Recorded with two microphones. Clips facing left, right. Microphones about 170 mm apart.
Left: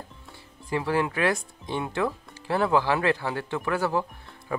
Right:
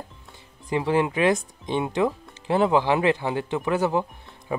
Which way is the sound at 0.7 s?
20° right (ahead or behind).